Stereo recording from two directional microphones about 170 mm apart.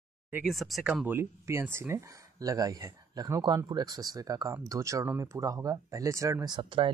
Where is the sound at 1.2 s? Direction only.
15° right (ahead or behind).